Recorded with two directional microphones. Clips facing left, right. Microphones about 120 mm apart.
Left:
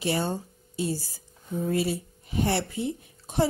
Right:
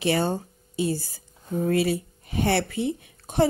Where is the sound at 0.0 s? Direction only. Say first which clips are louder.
Right 4 dB; 65° right (ahead or behind).